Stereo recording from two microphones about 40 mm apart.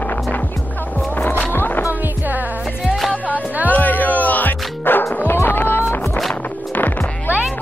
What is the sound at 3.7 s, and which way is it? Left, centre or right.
Music, left.